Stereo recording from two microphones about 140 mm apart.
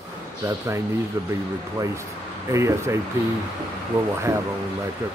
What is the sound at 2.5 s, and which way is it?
Speech, 20° right (ahead or behind).